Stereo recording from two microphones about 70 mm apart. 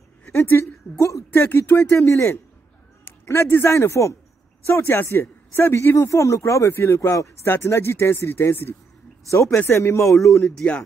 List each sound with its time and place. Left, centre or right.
0.3 s a woman's voice: left
0.9 s speech: left
1.4 s speech: left
10.1 s speech: centre